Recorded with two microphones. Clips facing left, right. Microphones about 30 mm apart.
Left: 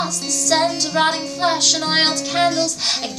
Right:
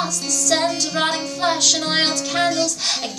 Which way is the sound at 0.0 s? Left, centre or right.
Centre.